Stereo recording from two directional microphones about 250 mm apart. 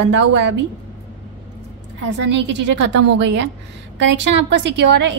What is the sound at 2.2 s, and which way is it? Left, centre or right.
A woman's voice, right.